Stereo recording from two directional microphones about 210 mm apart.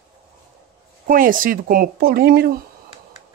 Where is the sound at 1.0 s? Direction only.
40° right (ahead or behind).